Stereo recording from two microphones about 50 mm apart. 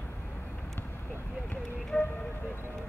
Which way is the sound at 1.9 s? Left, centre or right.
Left.